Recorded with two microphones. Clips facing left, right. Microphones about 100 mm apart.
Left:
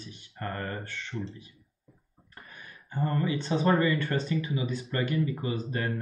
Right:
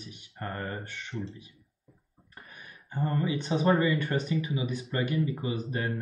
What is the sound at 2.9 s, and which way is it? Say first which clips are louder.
Speech: left 1 dB; 15° right (ahead or behind).